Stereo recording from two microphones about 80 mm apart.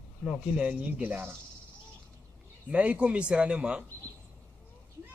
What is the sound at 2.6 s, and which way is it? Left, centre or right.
Speech, centre.